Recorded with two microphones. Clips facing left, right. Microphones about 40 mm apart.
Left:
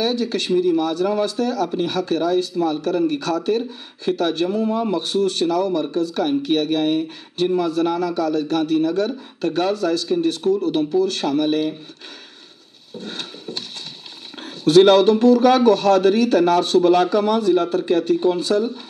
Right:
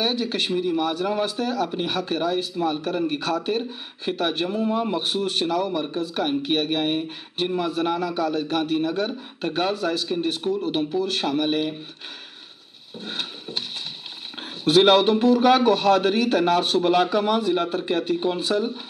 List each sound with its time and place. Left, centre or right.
0.0 s a man's voice: right
12.9 s a sound: right
14.4 s a man's voice: right